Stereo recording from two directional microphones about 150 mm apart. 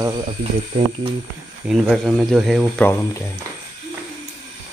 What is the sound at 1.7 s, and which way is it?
Speech, 5° right (ahead or behind).